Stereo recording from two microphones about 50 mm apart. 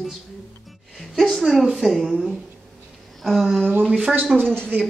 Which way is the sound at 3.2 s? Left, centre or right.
Centre.